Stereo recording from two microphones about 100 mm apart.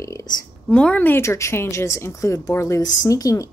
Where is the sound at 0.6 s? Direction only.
10° left (ahead or behind).